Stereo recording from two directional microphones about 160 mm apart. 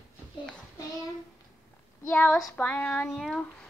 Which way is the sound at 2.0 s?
10° left (ahead or behind).